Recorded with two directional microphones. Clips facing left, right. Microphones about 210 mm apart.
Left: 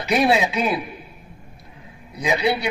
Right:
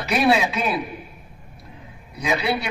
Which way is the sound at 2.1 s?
20° left (ahead or behind).